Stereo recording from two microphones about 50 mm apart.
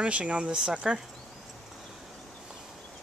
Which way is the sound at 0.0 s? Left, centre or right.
Right.